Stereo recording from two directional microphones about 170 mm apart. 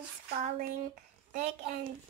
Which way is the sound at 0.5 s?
50° right (ahead or behind).